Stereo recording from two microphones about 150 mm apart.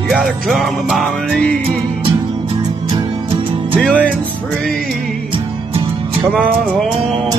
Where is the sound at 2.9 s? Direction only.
40° right (ahead or behind).